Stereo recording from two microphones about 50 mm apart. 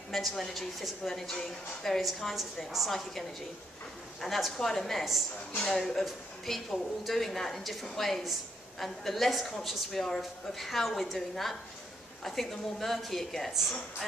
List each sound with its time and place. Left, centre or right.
0.4 s a woman's voice: centre